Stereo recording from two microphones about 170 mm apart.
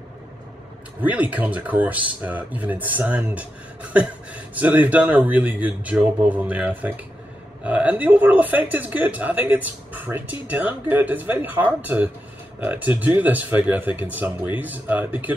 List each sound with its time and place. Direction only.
1.0 s speech: 10° right (ahead or behind)